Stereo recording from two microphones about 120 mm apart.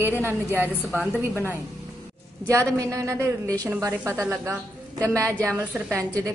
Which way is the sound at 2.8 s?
30° right (ahead or behind).